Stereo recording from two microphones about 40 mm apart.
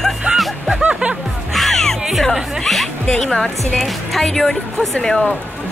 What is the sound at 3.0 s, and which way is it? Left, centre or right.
Speech, left.